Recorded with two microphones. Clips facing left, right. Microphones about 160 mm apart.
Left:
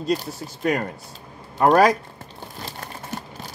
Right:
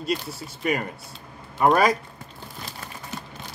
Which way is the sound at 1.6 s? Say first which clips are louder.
Left 3 dB; 5° right (ahead or behind).